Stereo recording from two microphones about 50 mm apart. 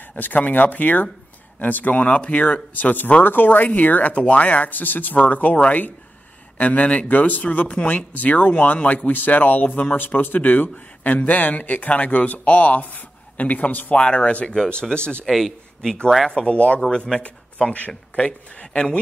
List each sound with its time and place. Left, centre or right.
0.1 s speech: left; by 15.0 s centre
15.2 s a man's voice: centre
16.3 s speech: left